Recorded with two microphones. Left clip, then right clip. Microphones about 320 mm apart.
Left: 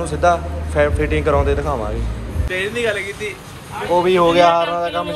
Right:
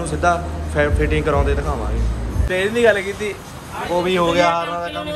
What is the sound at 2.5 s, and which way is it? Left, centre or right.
Speech, right.